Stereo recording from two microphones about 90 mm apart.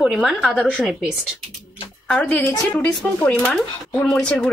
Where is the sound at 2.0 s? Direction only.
10° left (ahead or behind).